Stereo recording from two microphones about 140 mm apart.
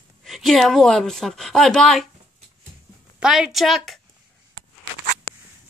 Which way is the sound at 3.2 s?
5° right (ahead or behind).